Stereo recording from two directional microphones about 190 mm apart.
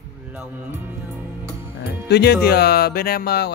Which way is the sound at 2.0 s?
60° left (ahead or behind).